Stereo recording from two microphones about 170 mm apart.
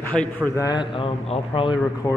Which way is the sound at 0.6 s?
25° left (ahead or behind).